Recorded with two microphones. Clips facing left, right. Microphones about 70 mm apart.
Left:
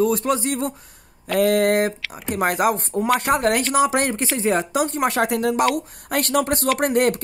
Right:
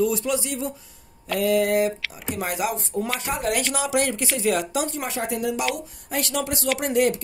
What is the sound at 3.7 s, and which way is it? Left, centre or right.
Speech, left.